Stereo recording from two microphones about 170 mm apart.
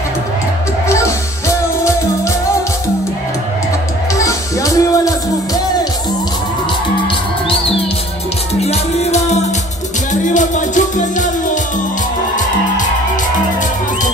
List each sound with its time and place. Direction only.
0.8 s music: 15° left (ahead or behind)
4.1 s music: 20° left (ahead or behind)
7.4 s music: 35° left (ahead or behind); by 11.2 s 50° left (ahead or behind)